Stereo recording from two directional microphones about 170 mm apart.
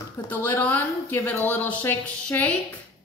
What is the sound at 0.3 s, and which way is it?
Speech, 10° left (ahead or behind).